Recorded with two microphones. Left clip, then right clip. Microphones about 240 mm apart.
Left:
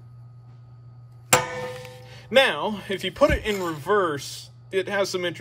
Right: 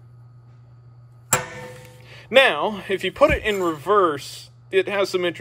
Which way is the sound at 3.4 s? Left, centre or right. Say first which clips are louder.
Right 4 dB; centre.